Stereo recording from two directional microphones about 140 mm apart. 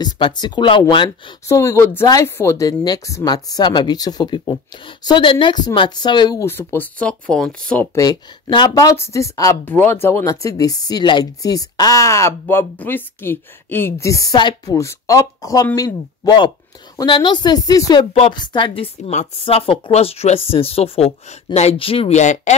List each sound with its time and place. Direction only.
0.0 s speech: 30° left (ahead or behind)
1.5 s speech: 20° left (ahead or behind)
6.4 s speech: 15° left (ahead or behind)
7.9 s speech: 30° left (ahead or behind)
8.9 s speech: 20° left (ahead or behind)
19.0 s speech: 50° left (ahead or behind)